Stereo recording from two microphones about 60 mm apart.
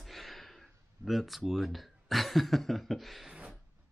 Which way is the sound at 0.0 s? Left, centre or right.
Centre.